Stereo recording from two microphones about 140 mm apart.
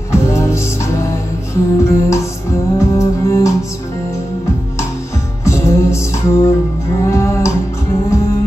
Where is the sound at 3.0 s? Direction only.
20° left (ahead or behind).